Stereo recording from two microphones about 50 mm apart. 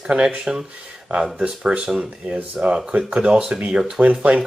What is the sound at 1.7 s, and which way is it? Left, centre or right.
Speech, centre.